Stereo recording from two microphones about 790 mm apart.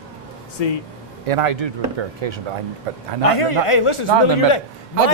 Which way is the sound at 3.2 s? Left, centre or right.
Left.